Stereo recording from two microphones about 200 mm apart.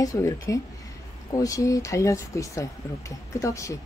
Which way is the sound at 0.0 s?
15° left (ahead or behind).